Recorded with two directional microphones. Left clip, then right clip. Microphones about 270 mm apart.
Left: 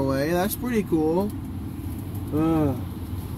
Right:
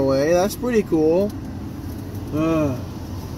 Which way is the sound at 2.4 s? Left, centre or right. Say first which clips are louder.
Right 3 dB; right.